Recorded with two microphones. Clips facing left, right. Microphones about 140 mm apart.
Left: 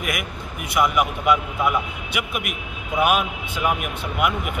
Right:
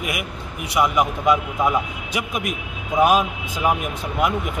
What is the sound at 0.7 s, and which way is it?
Speech, 20° right (ahead or behind).